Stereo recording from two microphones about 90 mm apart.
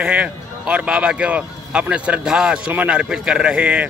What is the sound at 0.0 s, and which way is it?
A man's voice, 15° right (ahead or behind).